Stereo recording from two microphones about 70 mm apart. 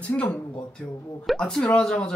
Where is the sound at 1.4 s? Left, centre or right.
Centre.